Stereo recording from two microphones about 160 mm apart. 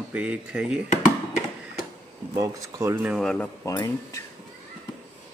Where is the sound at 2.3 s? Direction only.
20° right (ahead or behind).